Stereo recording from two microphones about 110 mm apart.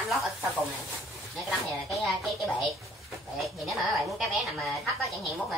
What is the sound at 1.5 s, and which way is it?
A woman's voice, centre (ahead or behind).